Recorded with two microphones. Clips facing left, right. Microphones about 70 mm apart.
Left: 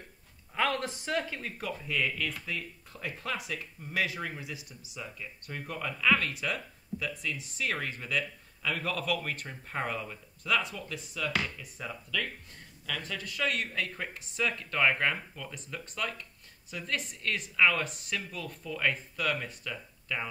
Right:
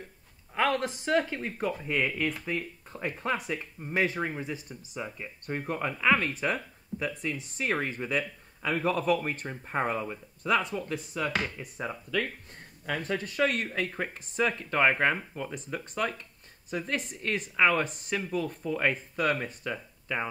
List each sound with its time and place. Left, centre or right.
0.6 s speech: right
10.5 s speech: right
16.7 s speech: right
17.6 s speech: right